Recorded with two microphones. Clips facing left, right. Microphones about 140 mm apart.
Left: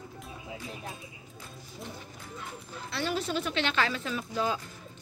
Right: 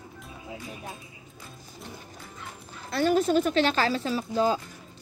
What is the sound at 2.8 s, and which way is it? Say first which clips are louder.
Speech: right 9 dB; 45° right (ahead or behind).